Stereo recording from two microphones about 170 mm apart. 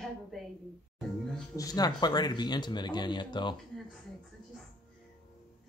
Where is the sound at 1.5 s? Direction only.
20° left (ahead or behind).